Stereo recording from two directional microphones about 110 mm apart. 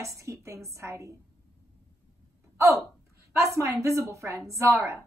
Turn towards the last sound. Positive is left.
turn(degrees=-25)  # may be behind; listen again after turning